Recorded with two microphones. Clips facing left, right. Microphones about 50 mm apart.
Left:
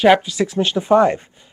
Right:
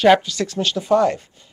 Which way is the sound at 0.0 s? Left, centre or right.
Centre.